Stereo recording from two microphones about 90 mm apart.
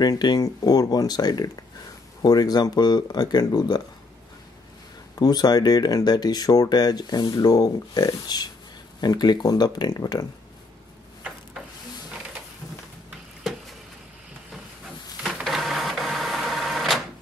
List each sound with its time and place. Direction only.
0.0 s speech: 50° left (ahead or behind)
5.2 s speech: 50° left (ahead or behind)
15.2 s printer: centre (ahead or behind)